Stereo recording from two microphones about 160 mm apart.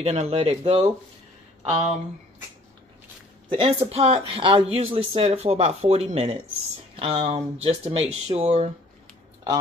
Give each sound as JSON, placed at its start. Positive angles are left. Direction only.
{"t": 0.0, "sound": "speech", "side_deg": -40}
{"t": 3.4, "sound": "speech", "side_deg": -35}